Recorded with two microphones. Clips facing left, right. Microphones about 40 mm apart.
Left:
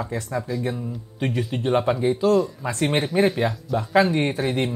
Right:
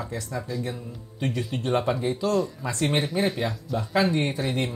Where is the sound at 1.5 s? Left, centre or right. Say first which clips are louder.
Left 4 dB; left.